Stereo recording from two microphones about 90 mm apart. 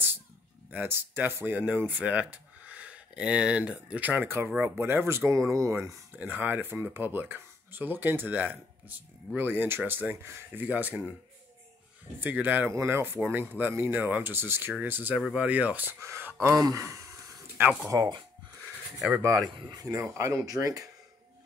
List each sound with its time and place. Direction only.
0.7 s speech: 25° right (ahead or behind)
6.1 s speech: 20° right (ahead or behind)
12.2 s speech: 20° right (ahead or behind); by 18.2 s 45° right (ahead or behind)
19.2 s speech: 35° right (ahead or behind)